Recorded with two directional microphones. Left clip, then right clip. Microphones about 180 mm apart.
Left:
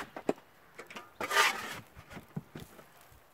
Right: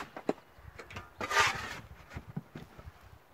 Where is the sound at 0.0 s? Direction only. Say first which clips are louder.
Left 1 dB; 50° left (ahead or behind).